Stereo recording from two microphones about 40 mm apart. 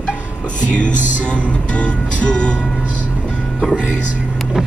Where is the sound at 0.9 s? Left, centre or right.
Right.